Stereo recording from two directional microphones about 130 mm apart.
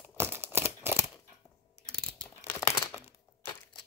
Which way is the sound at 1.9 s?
5° left (ahead or behind).